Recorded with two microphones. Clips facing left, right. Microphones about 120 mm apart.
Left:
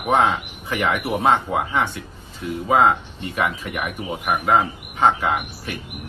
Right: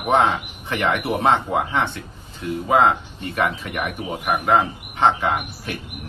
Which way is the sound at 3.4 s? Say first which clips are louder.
Right 1 dB; 5° left (ahead or behind).